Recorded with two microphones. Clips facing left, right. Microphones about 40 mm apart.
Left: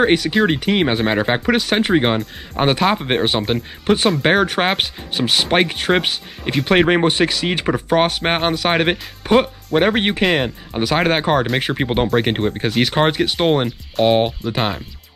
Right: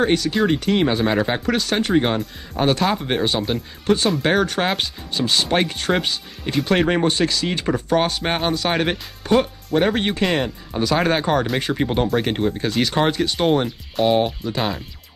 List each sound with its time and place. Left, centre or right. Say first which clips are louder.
0.0 s speech: left 3 dB; left